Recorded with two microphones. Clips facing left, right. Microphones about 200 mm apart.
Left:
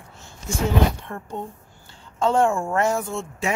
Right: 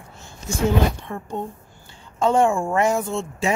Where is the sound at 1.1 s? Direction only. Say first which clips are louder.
Right 3 dB; 15° right (ahead or behind).